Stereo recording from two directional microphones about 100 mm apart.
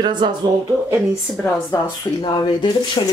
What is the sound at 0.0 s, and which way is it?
Speech, 50° right (ahead or behind).